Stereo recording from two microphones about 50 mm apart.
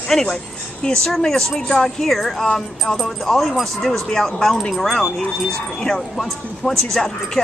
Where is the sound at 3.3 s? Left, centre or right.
Centre.